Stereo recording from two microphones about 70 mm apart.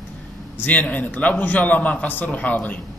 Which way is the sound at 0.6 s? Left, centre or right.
Left.